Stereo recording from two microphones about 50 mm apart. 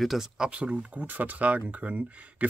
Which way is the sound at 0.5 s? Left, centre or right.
Right.